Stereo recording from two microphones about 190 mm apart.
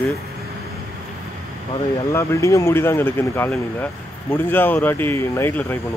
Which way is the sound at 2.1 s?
15° left (ahead or behind).